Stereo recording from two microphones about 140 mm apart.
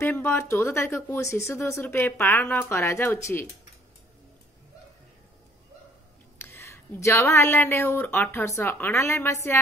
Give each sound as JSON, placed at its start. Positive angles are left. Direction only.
{"t": 0.1, "sound": "speech", "side_deg": 15}
{"t": 6.3, "sound": "speech", "side_deg": 15}